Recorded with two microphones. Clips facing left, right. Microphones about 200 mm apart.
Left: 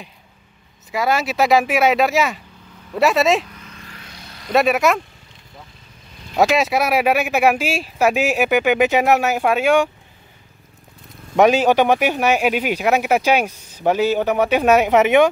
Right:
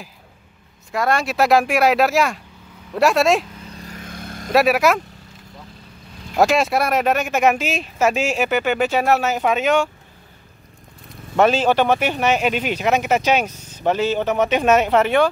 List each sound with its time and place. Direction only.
0.9 s speech: centre (ahead or behind)
3.6 s vehicle: 40° right (ahead or behind)
4.5 s speech: centre (ahead or behind)
6.3 s speech: centre (ahead or behind)
11.3 s speech: 15° left (ahead or behind)